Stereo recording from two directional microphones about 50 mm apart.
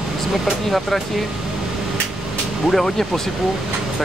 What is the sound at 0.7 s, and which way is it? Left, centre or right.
Speech, centre.